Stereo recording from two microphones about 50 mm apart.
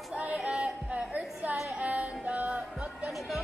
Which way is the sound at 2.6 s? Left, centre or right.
Centre.